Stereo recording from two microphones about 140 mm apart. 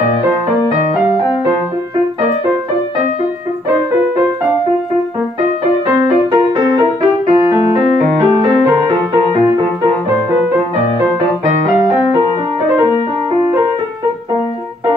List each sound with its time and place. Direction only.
5.9 s music: 30° right (ahead or behind)